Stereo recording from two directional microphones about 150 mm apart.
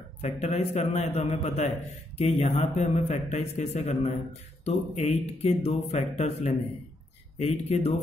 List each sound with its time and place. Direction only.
0.2 s a man's voice: 50° left (ahead or behind)